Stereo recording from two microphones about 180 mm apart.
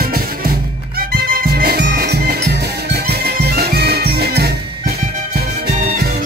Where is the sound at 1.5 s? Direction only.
60° right (ahead or behind).